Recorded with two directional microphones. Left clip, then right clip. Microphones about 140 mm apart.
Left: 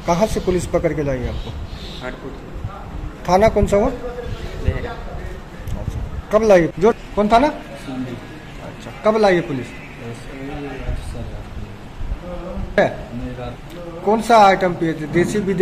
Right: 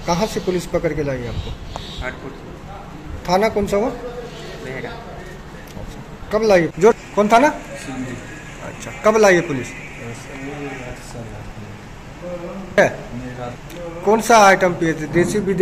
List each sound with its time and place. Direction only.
0.0 s speech: 15° left (ahead or behind)
3.3 s speech: 15° left (ahead or behind)
6.3 s speech: 15° left (ahead or behind)
6.8 s a man's voice: centre (ahead or behind)
9.0 s a man's voice: 5° left (ahead or behind)
12.8 s a man's voice: 5° left (ahead or behind)
14.0 s a man's voice: centre (ahead or behind)